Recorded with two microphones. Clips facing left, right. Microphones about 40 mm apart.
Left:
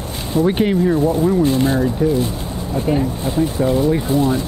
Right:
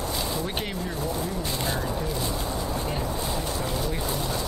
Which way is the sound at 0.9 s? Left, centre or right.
Left.